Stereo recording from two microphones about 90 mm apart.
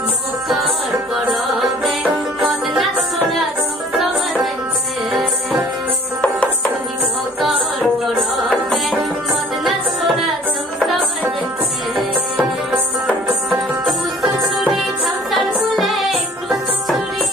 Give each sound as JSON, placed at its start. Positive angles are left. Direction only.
{"t": 1.3, "sound": "music", "side_deg": 0}
{"t": 8.0, "sound": "music", "side_deg": 0}
{"t": 12.4, "sound": "music", "side_deg": -20}
{"t": 13.5, "sound": "music", "side_deg": -5}